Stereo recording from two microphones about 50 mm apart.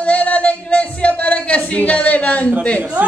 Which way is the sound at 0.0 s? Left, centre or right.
Left.